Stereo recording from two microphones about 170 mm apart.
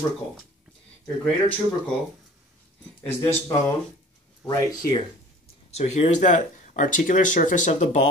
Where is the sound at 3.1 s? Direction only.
15° left (ahead or behind).